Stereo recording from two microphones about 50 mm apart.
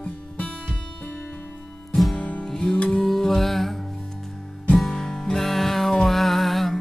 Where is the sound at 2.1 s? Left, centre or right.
Left.